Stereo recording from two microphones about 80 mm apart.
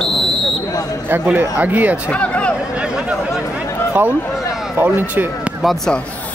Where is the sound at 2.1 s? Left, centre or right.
Centre.